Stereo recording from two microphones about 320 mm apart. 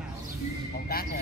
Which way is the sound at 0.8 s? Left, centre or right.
Left.